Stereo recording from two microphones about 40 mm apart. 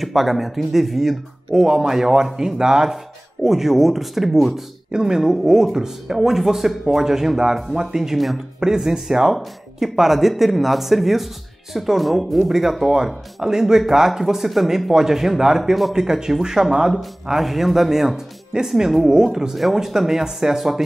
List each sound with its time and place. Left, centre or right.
0.0 s speech: centre